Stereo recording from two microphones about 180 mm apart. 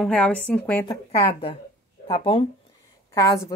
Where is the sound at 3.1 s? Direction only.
20° left (ahead or behind).